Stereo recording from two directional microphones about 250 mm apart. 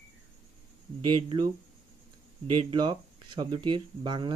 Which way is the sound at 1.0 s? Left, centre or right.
Right.